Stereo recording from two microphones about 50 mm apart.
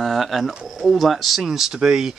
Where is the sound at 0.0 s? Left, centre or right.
Centre.